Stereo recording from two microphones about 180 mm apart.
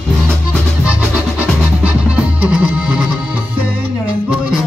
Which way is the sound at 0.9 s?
5° right (ahead or behind).